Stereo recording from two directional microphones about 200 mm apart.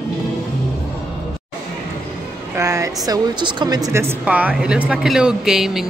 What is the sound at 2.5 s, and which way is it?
A woman's voice, 15° right (ahead or behind).